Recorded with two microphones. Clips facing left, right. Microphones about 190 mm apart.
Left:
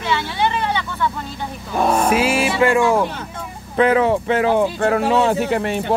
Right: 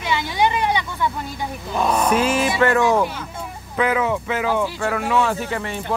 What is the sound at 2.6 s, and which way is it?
Speech, 10° left (ahead or behind).